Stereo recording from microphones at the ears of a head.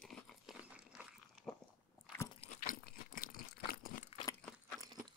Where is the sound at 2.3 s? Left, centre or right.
Left.